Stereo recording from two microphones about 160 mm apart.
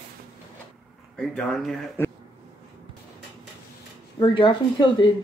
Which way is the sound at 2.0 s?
15° left (ahead or behind).